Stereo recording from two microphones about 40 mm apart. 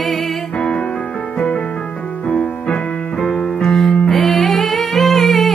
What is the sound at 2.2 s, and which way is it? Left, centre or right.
Music, left.